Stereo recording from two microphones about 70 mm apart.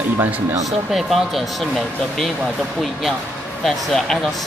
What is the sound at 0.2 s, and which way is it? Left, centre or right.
Speech, right.